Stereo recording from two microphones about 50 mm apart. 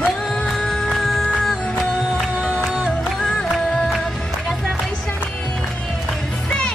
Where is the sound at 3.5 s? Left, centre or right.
Centre.